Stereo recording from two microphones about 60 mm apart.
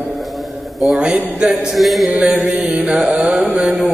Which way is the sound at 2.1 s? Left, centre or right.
Centre.